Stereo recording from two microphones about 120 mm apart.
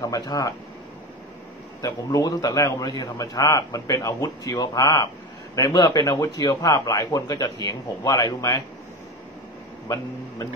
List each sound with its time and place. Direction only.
0.0 s speech: 30° left (ahead or behind)
1.8 s a man's voice: 30° left (ahead or behind)